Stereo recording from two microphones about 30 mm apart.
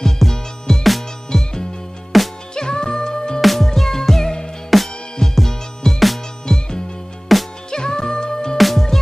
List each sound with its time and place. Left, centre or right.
0.3 s music: centre
2.1 s music: centre
2.5 s music: left
3.3 s music: centre
7.3 s music: centre
7.7 s music: left
8.5 s music: centre